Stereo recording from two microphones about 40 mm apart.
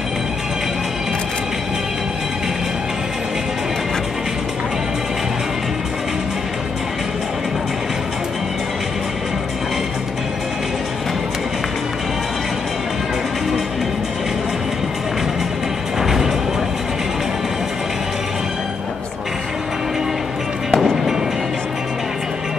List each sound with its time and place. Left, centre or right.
16.0 s music: centre
20.7 s music: centre